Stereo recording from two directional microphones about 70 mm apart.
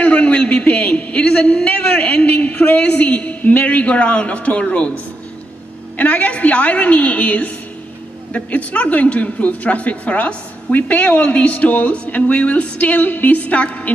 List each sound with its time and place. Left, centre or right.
0.0 s a sound: centre
1.2 s a woman's voice: centre
5.9 s a woman's voice: centre